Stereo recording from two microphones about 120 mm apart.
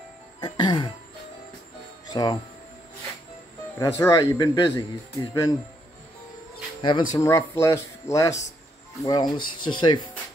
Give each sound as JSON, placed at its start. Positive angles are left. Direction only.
{"t": 0.4, "sound": "music", "side_deg": 35}
{"t": 2.0, "sound": "music", "side_deg": 35}
{"t": 3.8, "sound": "speech", "side_deg": 30}
{"t": 6.8, "sound": "speech", "side_deg": 40}
{"t": 7.2, "sound": "speech", "side_deg": 25}